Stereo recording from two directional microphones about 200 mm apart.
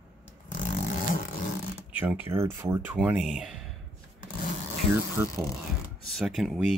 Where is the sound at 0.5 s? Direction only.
40° left (ahead or behind).